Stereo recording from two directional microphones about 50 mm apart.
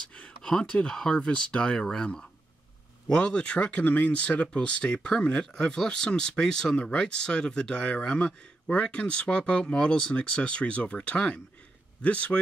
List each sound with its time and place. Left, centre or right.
0.4 s speech: centre